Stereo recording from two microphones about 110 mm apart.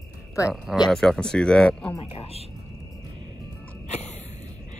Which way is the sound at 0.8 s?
5° left (ahead or behind).